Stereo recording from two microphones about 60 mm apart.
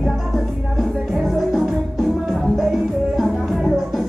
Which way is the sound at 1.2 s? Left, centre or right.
Centre.